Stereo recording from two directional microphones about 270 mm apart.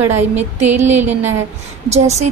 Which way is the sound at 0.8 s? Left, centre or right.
Centre.